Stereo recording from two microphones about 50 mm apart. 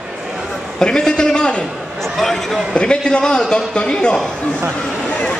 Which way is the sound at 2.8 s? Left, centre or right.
Centre.